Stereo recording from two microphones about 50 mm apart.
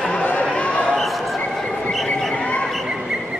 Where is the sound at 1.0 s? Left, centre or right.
Centre.